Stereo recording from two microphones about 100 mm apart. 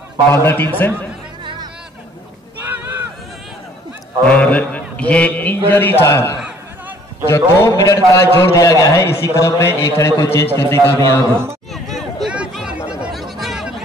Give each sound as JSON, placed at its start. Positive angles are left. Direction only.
{"t": 0.3, "sound": "a man's voice", "side_deg": 25}
{"t": 1.4, "sound": "music", "side_deg": -55}
{"t": 2.6, "sound": "a sound", "side_deg": -20}
{"t": 4.3, "sound": "mantra", "side_deg": 10}
{"t": 5.7, "sound": "a man's voice", "side_deg": 20}
{"t": 11.7, "sound": "a sound", "side_deg": 0}
{"t": 12.5, "sound": "chatter", "side_deg": -10}
{"t": 13.1, "sound": "chatter", "side_deg": 0}